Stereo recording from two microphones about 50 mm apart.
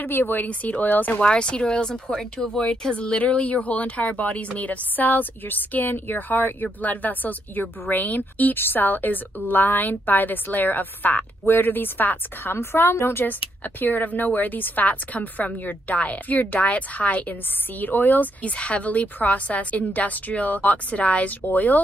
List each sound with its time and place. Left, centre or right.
0.0 s speech: left
0.5 s a woman's voice: left
1.2 s a woman's voice: centre; by 12.5 s left
12.5 s a woman's voice: left
13.7 s a woman's voice: left